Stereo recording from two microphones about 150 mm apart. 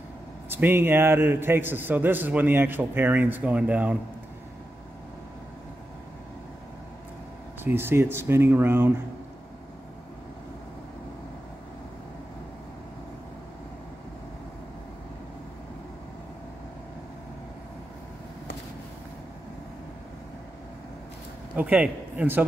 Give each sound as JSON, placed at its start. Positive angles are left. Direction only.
{"t": 0.5, "sound": "a man's voice", "side_deg": -15}
{"t": 7.6, "sound": "a man's voice", "side_deg": -15}
{"t": 21.5, "sound": "speech", "side_deg": -10}